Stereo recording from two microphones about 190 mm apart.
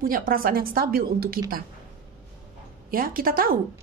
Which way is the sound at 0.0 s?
50° right (ahead or behind).